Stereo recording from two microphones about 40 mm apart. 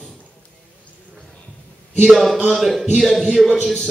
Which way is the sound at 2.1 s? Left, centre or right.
Centre.